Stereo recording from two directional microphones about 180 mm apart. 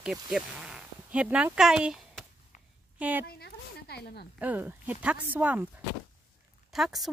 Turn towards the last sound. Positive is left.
turn(degrees=0)  # may be behind; listen again after turning